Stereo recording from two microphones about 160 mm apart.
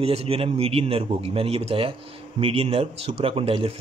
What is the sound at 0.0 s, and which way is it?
Speech, 40° right (ahead or behind).